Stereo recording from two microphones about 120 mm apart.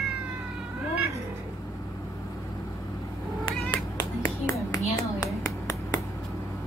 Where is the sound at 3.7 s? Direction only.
35° left (ahead or behind).